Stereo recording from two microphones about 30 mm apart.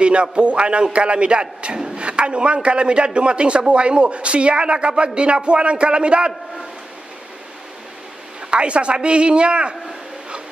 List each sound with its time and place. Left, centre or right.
0.0 s a man's voice: right
8.5 s a man's voice: right